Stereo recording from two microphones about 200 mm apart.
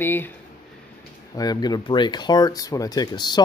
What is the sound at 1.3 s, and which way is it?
Speech, 20° left (ahead or behind).